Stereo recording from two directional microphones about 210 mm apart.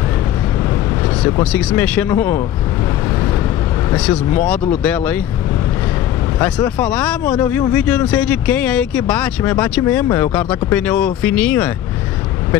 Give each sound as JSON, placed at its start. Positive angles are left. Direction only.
{"t": 1.2, "sound": "speech", "side_deg": 20}
{"t": 1.5, "sound": "speech", "side_deg": 5}
{"t": 3.9, "sound": "speech", "side_deg": 5}
{"t": 6.4, "sound": "speech", "side_deg": 10}